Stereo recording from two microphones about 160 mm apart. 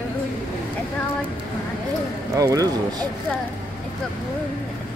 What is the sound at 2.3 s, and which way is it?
Speech, 20° right (ahead or behind).